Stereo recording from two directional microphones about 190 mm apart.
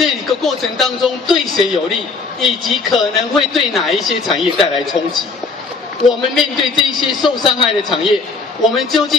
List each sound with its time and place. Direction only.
0.0 s speech: centre (ahead or behind)
6.0 s speech: centre (ahead or behind)
7.2 s a man's voice: 25° left (ahead or behind)
8.6 s speech: centre (ahead or behind)